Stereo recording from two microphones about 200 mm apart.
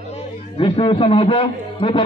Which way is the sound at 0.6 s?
30° left (ahead or behind).